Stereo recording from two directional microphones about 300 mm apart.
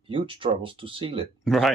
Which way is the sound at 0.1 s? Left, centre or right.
Centre.